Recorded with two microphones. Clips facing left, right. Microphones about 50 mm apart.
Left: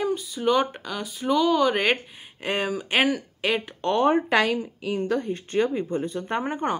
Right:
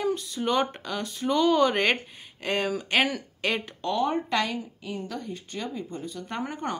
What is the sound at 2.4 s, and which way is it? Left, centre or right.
A woman's voice, centre.